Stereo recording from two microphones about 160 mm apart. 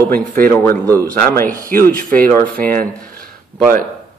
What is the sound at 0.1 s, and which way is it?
Speech, 55° right (ahead or behind).